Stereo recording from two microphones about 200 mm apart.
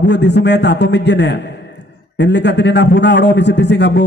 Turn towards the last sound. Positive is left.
turn(degrees=60)  # may be behind; listen again after turning